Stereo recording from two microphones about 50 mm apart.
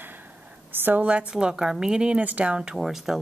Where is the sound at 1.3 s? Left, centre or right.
Centre.